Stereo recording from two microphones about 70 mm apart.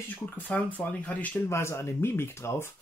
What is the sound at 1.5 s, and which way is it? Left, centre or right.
Speech, left.